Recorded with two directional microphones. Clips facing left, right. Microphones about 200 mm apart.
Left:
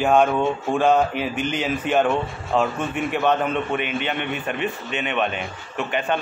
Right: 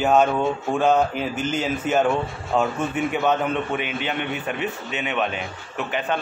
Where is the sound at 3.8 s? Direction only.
55° left (ahead or behind).